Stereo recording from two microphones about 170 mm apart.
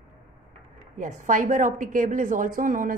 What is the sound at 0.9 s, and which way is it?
A woman's voice, 50° right (ahead or behind).